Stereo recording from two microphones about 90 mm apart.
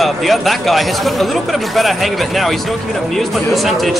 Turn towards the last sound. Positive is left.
turn(degrees=0)  # may be behind; listen again after turning